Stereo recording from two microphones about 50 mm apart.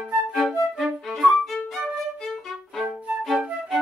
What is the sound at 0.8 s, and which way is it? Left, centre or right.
Music, centre.